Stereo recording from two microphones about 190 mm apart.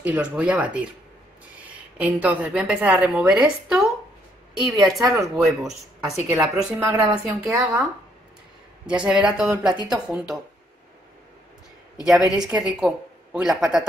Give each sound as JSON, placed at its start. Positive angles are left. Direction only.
{"t": 0.0, "sound": "a woman's voice", "side_deg": -5}
{"t": 8.8, "sound": "a woman's voice", "side_deg": -5}
{"t": 12.0, "sound": "a woman's voice", "side_deg": -5}